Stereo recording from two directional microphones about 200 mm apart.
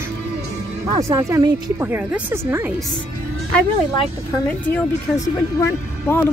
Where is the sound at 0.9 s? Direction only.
15° right (ahead or behind).